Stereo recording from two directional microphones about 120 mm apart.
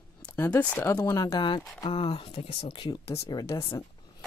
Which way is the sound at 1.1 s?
35° left (ahead or behind).